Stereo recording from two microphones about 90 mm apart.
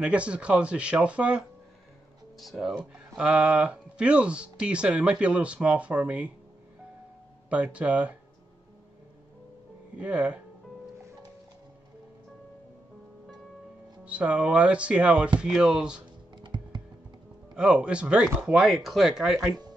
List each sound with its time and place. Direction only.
0.0 s speech: 15° right (ahead or behind)
2.3 s speech: centre (ahead or behind)
2.7 s speech: 10° right (ahead or behind)
7.4 s speech: 15° right (ahead or behind)
9.9 s speech: 15° right (ahead or behind)
14.0 s speech: 15° right (ahead or behind)
16.3 s computer keyboard: 60° right (ahead or behind)
17.6 s speech: 10° right (ahead or behind)